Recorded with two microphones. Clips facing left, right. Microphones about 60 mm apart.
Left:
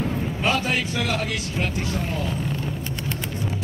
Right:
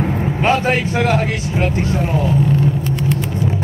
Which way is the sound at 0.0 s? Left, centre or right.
Right.